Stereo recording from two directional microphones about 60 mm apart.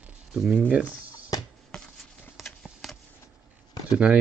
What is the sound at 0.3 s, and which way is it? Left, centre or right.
Speech, centre.